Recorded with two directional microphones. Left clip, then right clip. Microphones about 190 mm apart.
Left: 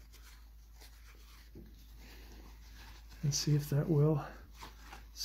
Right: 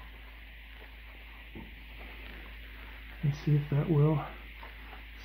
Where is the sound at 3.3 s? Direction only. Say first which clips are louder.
Right 1 dB; 30° left (ahead or behind).